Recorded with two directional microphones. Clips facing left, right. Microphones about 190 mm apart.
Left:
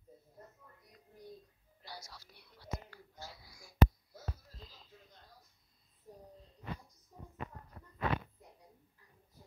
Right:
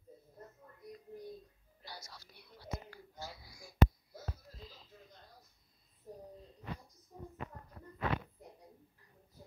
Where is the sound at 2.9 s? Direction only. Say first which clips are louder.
Right 3 dB; 10° right (ahead or behind).